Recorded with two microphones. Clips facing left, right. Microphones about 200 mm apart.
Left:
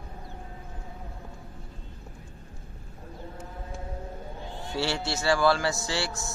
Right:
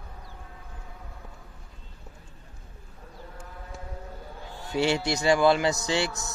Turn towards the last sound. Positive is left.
turn(degrees=-20)  # may be behind; listen again after turning